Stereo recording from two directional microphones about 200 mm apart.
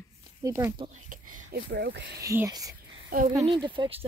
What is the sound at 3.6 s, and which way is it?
Speech, 25° right (ahead or behind).